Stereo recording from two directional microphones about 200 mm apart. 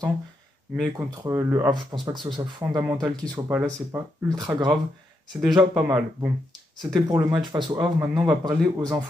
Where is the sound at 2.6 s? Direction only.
10° right (ahead or behind).